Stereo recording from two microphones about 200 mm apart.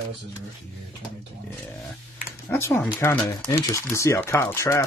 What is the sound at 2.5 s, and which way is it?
Speech, 10° left (ahead or behind).